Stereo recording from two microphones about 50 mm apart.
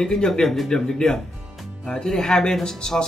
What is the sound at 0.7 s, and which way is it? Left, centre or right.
Speech, centre.